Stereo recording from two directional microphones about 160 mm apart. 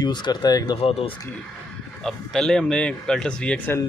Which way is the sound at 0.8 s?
40° left (ahead or behind).